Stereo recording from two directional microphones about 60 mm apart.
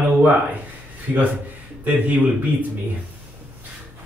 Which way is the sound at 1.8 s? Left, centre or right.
Right.